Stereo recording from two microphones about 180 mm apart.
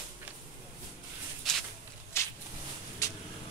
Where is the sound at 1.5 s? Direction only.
Centre (ahead or behind).